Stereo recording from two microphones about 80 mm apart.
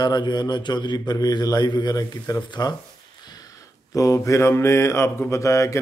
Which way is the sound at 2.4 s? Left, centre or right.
Left.